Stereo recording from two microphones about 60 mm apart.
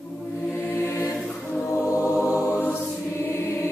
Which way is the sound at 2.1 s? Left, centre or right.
Right.